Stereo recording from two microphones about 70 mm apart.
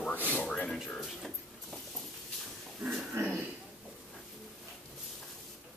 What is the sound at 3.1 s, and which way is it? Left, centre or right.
Speech, right.